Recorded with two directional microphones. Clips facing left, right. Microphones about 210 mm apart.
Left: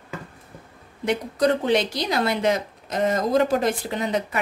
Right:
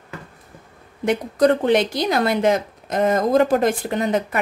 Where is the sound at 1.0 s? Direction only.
50° right (ahead or behind).